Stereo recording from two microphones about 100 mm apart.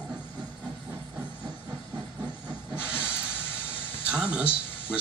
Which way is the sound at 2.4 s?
10° right (ahead or behind).